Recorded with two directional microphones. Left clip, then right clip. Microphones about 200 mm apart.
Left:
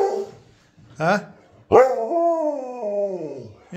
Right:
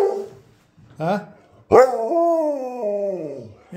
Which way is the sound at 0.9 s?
5° right (ahead or behind).